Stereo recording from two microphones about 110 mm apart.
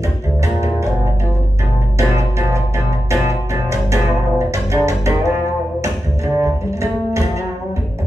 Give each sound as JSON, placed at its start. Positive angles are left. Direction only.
{"t": 2.0, "sound": "music", "side_deg": -25}